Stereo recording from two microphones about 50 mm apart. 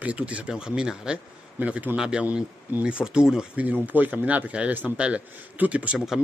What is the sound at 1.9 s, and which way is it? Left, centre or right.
Speech, centre.